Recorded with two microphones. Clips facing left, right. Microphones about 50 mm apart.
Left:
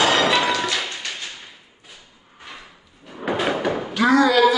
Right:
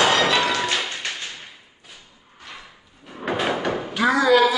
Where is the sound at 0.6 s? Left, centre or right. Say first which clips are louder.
Even; right.